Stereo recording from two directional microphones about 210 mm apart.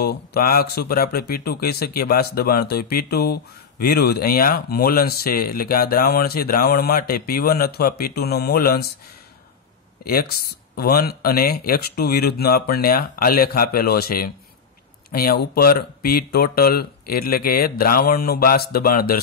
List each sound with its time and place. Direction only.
0.0 s speech: 50° left (ahead or behind)
10.0 s speech: 45° left (ahead or behind)